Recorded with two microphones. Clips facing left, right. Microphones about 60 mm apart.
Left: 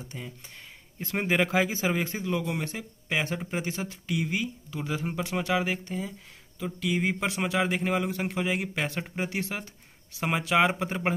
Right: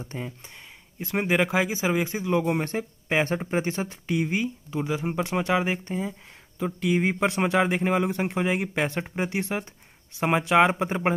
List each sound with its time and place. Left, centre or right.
0.0 s speech: right
1.0 s speech: centre
2.3 s speech: right
7.6 s speech: right